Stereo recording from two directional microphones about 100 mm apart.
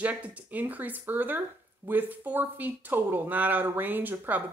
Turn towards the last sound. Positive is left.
turn(degrees=-20)  # may be behind; listen again after turning